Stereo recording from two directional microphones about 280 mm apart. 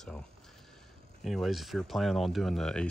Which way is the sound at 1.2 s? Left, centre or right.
Centre.